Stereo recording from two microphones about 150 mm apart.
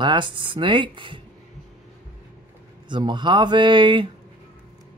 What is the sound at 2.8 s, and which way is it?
Speech, 30° right (ahead or behind).